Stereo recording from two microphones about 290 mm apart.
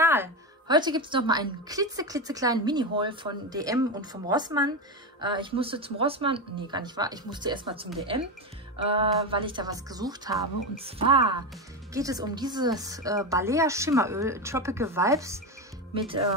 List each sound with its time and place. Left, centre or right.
0.0 s speech: centre